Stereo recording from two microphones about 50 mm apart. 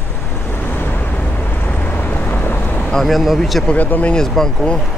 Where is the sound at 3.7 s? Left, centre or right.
Left.